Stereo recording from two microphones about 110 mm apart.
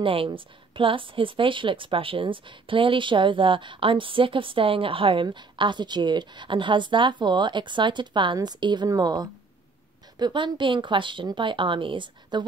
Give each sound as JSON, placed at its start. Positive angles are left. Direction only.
{"t": 0.0, "sound": "speech", "side_deg": -55}